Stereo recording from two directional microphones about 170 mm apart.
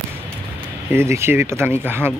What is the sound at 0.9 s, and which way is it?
Speech, 15° right (ahead or behind).